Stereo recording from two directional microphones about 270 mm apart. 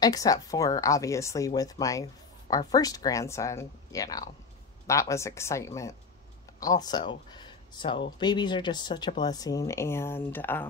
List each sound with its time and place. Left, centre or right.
0.0 s speech: centre